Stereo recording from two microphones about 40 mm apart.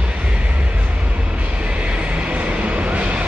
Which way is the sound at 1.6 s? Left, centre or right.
Right.